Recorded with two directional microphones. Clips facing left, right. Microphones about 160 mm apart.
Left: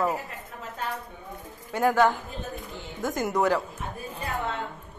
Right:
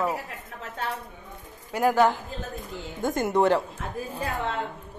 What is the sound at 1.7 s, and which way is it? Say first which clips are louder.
A woman's voice: right 1 dB; 15° right (ahead or behind).